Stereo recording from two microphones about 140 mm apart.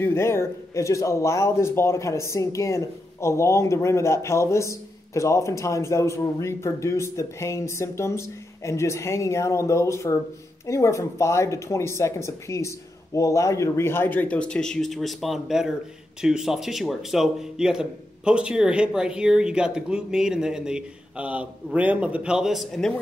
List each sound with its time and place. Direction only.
0.0 s a man's voice: 15° left (ahead or behind)